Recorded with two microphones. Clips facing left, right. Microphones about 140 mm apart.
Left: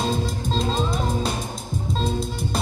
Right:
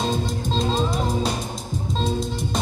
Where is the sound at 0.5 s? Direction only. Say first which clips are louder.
Right 1 dB; centre (ahead or behind).